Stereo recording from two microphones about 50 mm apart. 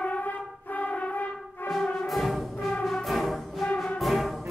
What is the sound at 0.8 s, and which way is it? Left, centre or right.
Brass instrument, left.